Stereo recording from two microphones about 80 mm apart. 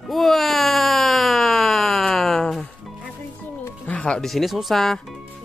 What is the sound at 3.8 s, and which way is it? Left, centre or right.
Speech, centre.